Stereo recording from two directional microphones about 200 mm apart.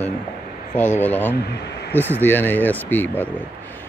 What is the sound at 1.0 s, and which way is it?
Speech, 10° left (ahead or behind).